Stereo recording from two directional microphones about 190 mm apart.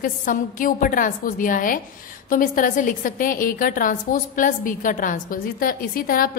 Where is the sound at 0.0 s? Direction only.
45° left (ahead or behind).